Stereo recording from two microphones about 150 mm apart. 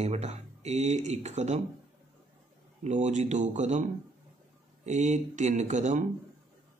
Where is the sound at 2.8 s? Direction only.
55° right (ahead or behind).